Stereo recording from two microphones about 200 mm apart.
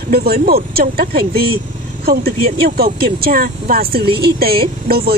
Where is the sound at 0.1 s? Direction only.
50° right (ahead or behind).